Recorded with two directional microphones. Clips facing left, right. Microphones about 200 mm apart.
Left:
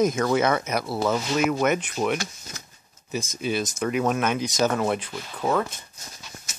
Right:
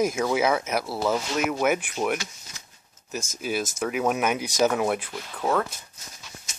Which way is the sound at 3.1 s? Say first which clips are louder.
Left 2 dB; 5° right (ahead or behind).